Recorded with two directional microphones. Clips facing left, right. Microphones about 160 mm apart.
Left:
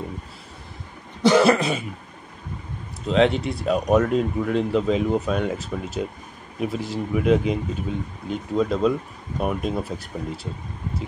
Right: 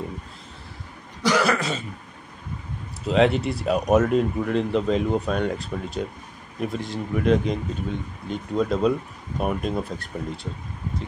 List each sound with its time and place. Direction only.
1.2 s cough: 25° left (ahead or behind)
3.1 s speech: centre (ahead or behind)